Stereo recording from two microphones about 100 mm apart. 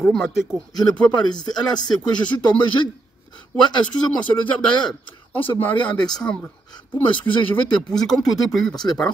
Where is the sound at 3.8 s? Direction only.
10° left (ahead or behind).